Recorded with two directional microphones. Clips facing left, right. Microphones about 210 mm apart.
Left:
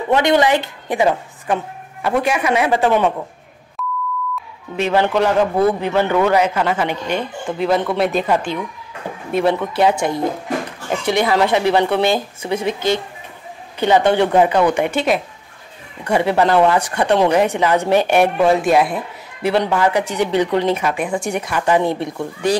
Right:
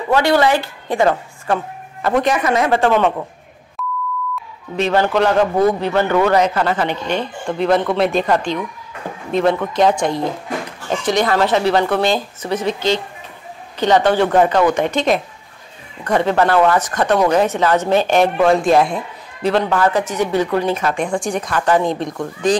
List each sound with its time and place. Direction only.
0.1 s a woman's voice: 20° left (ahead or behind)
3.8 s beep: centre (ahead or behind)
4.7 s a woman's voice: 10° left (ahead or behind)
13.7 s a woman's voice: 10° left (ahead or behind)
20.9 s a woman's voice: 5° left (ahead or behind)